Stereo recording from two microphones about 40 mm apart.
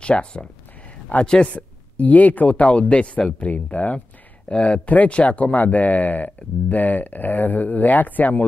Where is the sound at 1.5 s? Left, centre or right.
Left.